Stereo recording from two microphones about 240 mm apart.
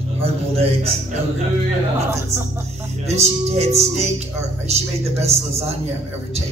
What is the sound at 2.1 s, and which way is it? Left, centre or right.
Speech, centre.